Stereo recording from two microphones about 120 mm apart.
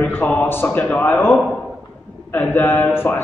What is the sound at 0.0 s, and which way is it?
A man's voice, 15° left (ahead or behind).